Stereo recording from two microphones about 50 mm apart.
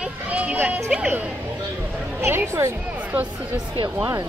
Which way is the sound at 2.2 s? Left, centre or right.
Right.